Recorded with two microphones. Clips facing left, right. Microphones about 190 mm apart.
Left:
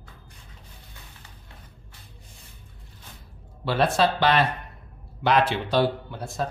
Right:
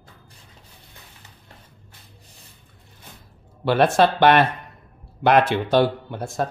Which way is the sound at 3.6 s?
60° right (ahead or behind).